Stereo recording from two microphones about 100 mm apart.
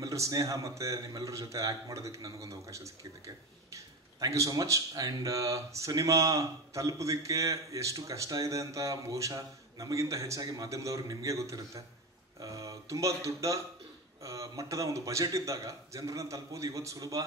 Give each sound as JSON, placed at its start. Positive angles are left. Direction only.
{"t": 0.0, "sound": "speech", "side_deg": -35}